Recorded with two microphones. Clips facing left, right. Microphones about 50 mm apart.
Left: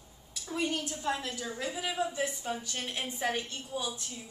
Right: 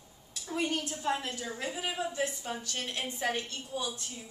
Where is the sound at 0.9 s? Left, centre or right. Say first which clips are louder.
Right 1 dB; right.